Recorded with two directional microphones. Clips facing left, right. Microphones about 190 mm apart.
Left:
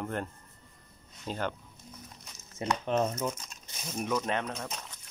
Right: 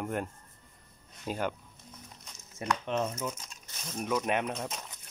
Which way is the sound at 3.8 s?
10° left (ahead or behind).